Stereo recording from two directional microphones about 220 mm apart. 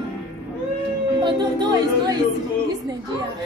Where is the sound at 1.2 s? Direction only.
20° right (ahead or behind).